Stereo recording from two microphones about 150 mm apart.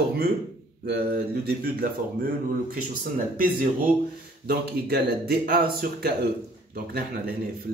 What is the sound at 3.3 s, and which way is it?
Speech, 65° right (ahead or behind).